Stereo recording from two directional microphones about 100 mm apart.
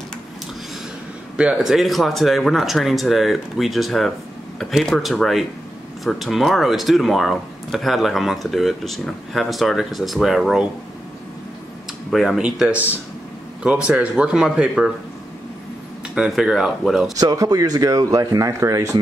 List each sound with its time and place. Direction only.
1.3 s speech: 5° right (ahead or behind)
12.1 s speech: 5° right (ahead or behind)
16.2 s speech: 5° right (ahead or behind)
17.2 s speech: 40° right (ahead or behind)